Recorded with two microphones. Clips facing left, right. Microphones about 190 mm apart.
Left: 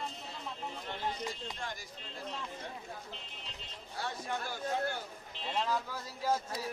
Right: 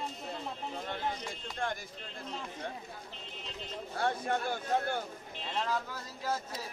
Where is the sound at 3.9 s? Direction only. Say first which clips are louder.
Right 6 dB; 55° right (ahead or behind).